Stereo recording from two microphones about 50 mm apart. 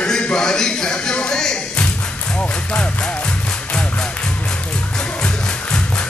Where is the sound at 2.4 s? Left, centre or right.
Centre.